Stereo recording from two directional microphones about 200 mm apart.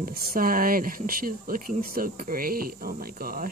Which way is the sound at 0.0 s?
45° right (ahead or behind).